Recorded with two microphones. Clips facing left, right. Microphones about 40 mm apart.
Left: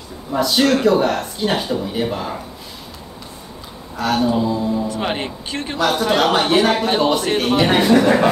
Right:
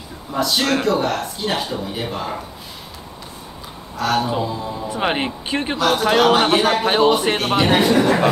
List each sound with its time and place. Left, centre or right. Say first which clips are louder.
0.3 s speech: left 3 dB; centre
3.9 s a woman's voice: left 1 dB; centre
4.3 s speech: left 5 dB; centre
5.8 s a man's voice: even; centre